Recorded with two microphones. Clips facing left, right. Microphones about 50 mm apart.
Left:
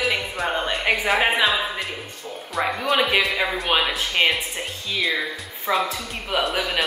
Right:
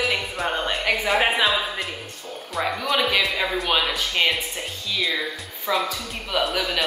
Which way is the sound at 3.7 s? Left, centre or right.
Centre.